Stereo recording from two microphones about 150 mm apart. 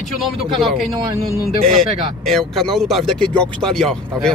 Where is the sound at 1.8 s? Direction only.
Centre (ahead or behind).